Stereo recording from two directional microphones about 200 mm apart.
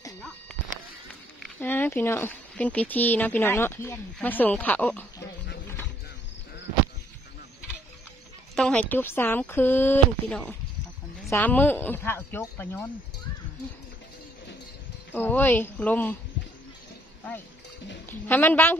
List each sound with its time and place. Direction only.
1.6 s speech: 10° left (ahead or behind)
8.5 s speech: 5° left (ahead or behind)
15.1 s speech: 10° left (ahead or behind)
18.0 s speech: 10° left (ahead or behind)